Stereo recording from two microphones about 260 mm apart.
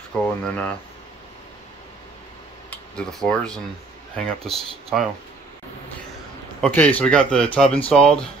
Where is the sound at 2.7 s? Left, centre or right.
Centre.